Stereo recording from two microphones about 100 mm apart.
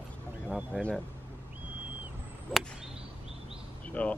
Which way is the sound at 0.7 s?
15° left (ahead or behind).